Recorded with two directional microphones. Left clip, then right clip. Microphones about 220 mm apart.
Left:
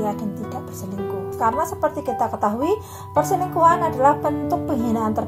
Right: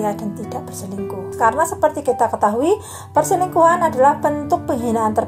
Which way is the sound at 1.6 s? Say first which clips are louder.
Right 6 dB; 25° right (ahead or behind).